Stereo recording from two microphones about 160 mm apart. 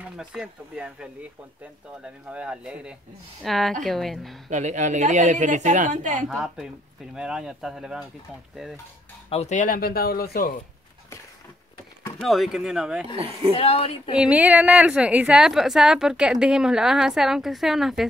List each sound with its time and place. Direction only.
0.2 s a woman's voice: 5° right (ahead or behind)
2.2 s a woman's voice: 5° right (ahead or behind)
4.5 s speech: 45° right (ahead or behind)
6.2 s a woman's voice: 5° right (ahead or behind)
9.3 s speech: 45° left (ahead or behind); by 10.5 s 70° left (ahead or behind)
12.2 s a woman's voice: centre (ahead or behind)
13.1 s speech: 40° right (ahead or behind)
13.6 s speech: 40° left (ahead or behind)
14.1 s a woman's voice: 5° right (ahead or behind)